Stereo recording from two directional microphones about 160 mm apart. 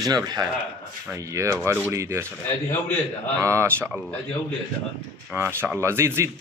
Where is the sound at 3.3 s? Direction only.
20° right (ahead or behind).